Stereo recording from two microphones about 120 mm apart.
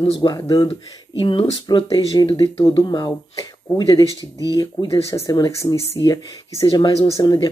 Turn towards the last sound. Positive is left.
turn(degrees=35)  # may be behind; listen again after turning